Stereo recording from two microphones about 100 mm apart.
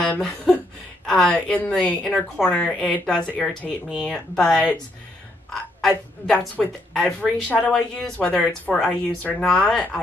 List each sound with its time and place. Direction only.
0.0 s a woman's voice: 5° left (ahead or behind)
1.3 s speech: 15° left (ahead or behind)
6.3 s speech: 15° left (ahead or behind)
6.9 s speech: 5° left (ahead or behind)